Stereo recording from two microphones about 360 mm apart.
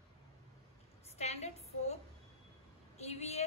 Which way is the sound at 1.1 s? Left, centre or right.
Centre.